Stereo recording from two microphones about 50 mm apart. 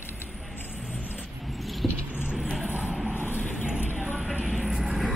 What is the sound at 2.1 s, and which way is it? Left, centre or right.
Vehicle, right.